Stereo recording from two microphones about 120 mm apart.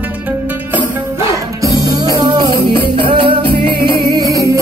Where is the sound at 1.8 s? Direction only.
30° right (ahead or behind).